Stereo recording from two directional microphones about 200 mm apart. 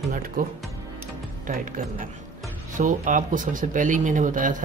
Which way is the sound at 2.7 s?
40° right (ahead or behind).